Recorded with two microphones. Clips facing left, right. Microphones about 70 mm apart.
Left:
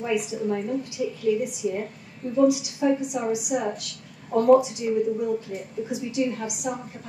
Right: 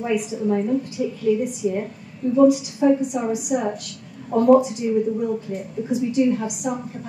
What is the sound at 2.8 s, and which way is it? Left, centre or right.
Speech, centre.